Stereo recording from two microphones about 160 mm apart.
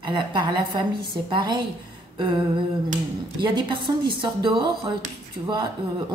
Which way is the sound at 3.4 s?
30° right (ahead or behind).